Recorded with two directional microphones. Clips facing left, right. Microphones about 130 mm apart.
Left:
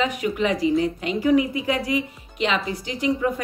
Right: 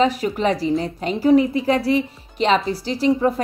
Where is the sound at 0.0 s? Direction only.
35° right (ahead or behind).